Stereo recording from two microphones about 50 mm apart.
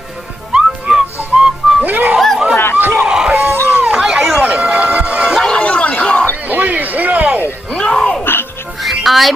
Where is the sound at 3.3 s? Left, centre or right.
Right.